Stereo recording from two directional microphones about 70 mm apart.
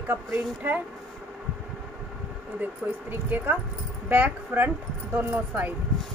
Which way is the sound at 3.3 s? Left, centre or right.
Right.